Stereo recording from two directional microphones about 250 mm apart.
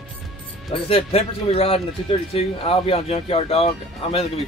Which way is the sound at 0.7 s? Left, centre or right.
Left.